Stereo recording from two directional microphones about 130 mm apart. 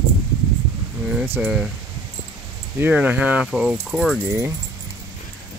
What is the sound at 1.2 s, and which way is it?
Speech, 20° right (ahead or behind).